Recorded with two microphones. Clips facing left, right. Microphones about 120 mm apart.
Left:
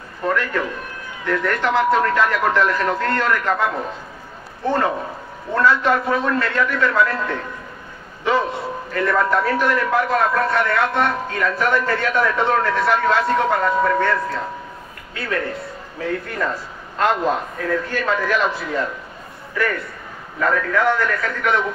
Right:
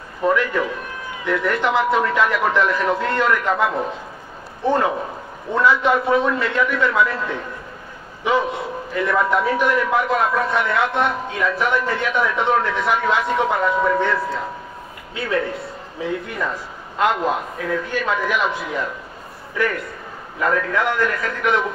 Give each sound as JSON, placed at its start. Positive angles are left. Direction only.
{"t": 0.2, "sound": "a man's voice", "side_deg": -10}
{"t": 8.2, "sound": "a sound", "side_deg": -10}
{"t": 8.9, "sound": "a man's voice", "side_deg": -10}
{"t": 15.1, "sound": "a man's voice", "side_deg": -20}